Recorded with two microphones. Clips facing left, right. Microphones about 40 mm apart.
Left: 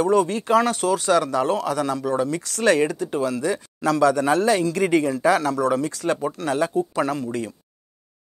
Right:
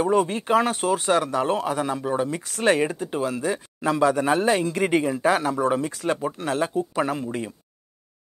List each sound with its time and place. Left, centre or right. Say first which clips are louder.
0.0 s speech: left 2 dB; right